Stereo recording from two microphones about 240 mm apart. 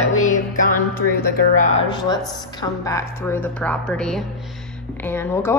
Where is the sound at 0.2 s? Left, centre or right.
Left.